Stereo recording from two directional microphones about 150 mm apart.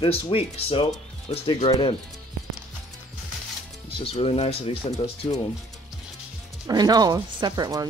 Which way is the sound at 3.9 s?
40° left (ahead or behind).